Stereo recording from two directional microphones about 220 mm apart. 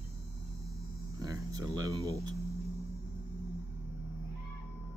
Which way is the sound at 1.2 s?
15° right (ahead or behind).